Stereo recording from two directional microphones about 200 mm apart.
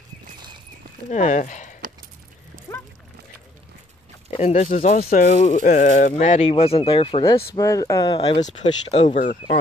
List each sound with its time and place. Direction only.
1.1 s speech: 35° left (ahead or behind)
4.3 s speech: 35° left (ahead or behind)
8.4 s speech: 35° left (ahead or behind)